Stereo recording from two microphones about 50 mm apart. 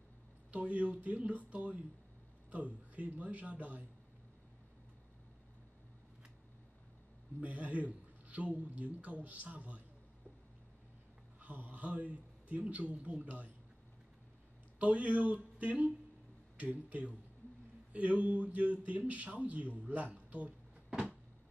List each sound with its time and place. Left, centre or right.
0.5 s a man's voice: right
7.3 s a man's voice: right
11.3 s a man's voice: right
14.8 s a man's voice: right